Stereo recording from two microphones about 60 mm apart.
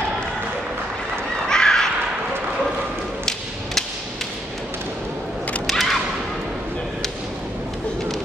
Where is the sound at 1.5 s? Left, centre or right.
Centre.